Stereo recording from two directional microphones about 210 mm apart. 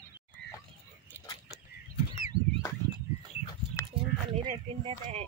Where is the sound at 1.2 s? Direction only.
10° right (ahead or behind).